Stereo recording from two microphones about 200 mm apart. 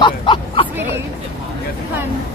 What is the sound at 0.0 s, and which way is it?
Hubbub, 25° left (ahead or behind).